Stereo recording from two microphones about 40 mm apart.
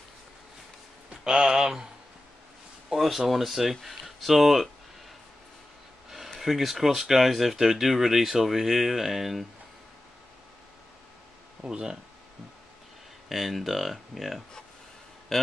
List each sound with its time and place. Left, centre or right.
1.2 s speech: centre
2.9 s speech: centre
6.0 s a sound: centre
6.4 s speech: centre
11.6 s speech: centre
13.3 s speech: centre